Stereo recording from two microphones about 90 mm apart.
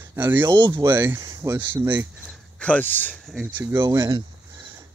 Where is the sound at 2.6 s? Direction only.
15° left (ahead or behind).